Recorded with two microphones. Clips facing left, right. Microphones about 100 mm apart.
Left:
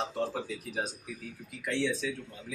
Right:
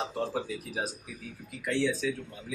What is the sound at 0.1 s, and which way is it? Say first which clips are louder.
Speech: right 1 dB; 5° right (ahead or behind).